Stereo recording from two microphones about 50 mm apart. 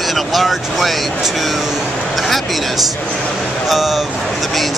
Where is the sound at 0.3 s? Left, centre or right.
Centre.